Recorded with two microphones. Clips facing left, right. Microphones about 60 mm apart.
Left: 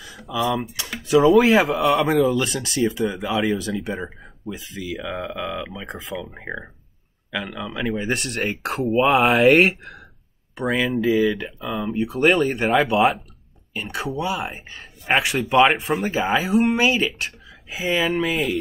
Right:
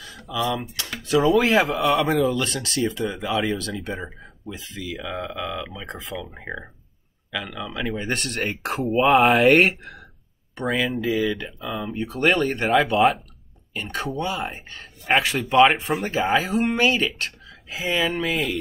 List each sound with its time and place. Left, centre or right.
0.0 s speech: centre